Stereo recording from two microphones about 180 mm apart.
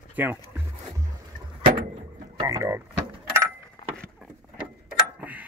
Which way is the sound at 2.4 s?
15° right (ahead or behind).